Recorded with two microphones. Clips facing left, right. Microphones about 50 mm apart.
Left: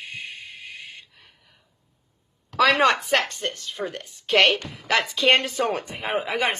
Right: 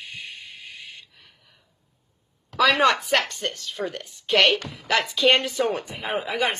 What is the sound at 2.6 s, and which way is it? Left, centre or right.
Speech, left.